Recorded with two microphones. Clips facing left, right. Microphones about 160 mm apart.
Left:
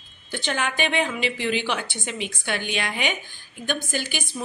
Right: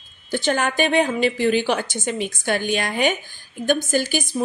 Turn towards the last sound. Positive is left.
turn(degrees=-40)  # may be behind; listen again after turning